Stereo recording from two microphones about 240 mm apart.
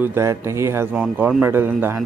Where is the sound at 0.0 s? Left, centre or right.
Centre.